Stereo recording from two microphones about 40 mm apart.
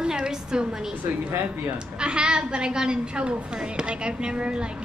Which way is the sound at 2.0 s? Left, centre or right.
Right.